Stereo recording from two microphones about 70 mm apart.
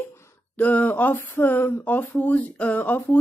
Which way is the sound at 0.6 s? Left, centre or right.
Left.